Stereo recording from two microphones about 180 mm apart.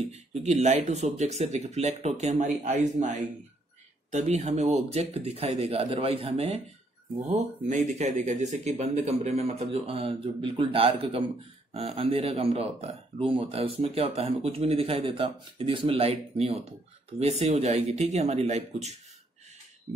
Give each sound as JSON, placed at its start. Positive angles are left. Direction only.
{"t": 0.0, "sound": "speech", "side_deg": -35}